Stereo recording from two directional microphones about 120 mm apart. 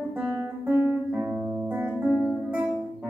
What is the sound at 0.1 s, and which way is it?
Music, 15° right (ahead or behind).